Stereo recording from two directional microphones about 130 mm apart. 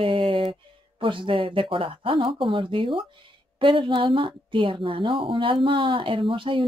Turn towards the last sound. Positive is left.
turn(degrees=-40)  # may be behind; listen again after turning